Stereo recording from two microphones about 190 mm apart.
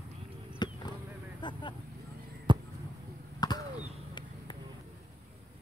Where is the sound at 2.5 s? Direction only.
25° right (ahead or behind).